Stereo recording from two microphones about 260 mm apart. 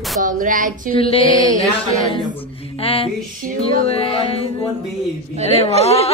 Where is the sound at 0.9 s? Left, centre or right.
Left.